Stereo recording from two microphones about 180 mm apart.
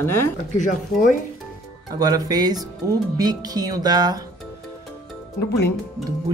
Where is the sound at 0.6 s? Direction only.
45° left (ahead or behind).